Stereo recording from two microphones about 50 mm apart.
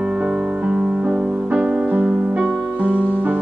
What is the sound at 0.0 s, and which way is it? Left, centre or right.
Music, centre.